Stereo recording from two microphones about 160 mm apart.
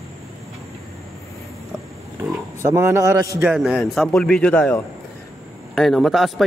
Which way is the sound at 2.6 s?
15° right (ahead or behind).